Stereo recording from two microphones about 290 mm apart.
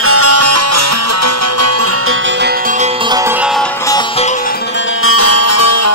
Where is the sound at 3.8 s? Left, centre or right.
Centre.